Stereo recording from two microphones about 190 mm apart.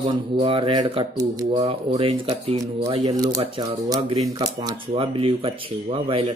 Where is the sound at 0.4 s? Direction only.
25° right (ahead or behind).